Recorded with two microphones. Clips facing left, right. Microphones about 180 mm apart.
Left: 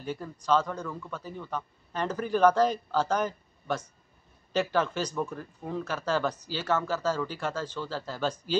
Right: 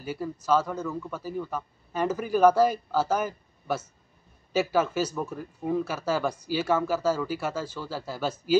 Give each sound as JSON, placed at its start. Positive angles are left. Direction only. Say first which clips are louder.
{"t": 0.0, "sound": "speech", "louder": "right 3 dB", "side_deg": -5}